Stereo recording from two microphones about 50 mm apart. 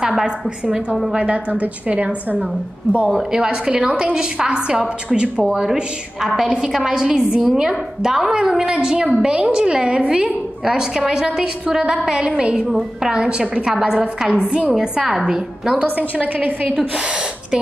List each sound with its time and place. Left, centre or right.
0.1 s a woman's voice: centre
1.1 s a woman's voice: right
3.1 s a woman's voice: centre
14.4 s a woman's voice: right
14.7 s a woman's voice: centre
15.8 s a woman's voice: right